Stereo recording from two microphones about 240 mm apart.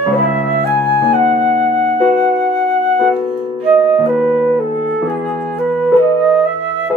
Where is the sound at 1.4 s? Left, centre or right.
Right.